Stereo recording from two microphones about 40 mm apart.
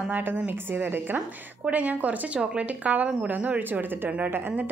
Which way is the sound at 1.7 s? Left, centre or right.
Right.